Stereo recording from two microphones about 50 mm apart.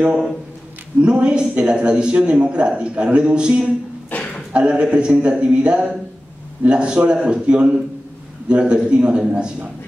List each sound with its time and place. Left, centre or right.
1.0 s a man's voice: centre
4.1 s a sound: left
4.5 s a man's voice: centre